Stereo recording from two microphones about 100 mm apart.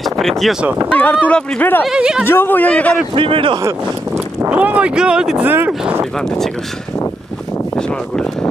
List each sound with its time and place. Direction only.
0.0 s speech: centre (ahead or behind)
0.9 s speech: 15° left (ahead or behind)
1.9 s speech: 5° right (ahead or behind)
2.2 s speech: 20° left (ahead or behind)
3.2 s speech: 60° right (ahead or behind)
3.5 s a sound: 30° right (ahead or behind)
4.5 s speech: 15° right (ahead or behind)
5.4 s speech: 20° right (ahead or behind)
6.1 s speech: 5° left (ahead or behind)
7.7 s a sound: 10° left (ahead or behind)